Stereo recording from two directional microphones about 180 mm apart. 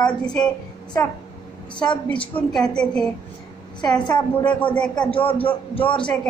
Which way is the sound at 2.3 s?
10° left (ahead or behind).